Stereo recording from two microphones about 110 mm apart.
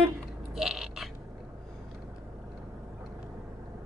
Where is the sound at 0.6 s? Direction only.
5° right (ahead or behind).